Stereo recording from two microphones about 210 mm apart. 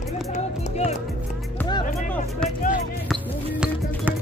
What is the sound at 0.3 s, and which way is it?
Music, 30° left (ahead or behind).